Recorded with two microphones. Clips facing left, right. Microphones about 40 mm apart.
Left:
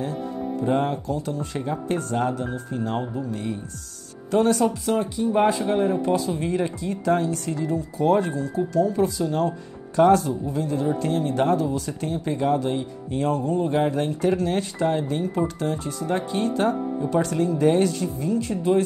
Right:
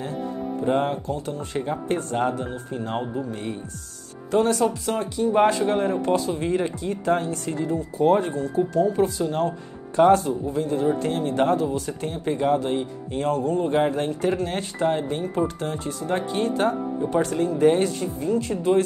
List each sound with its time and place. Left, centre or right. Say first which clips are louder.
0.7 s speech: right 1 dB; right